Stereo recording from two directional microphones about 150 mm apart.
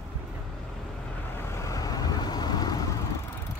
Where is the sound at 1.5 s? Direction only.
20° left (ahead or behind).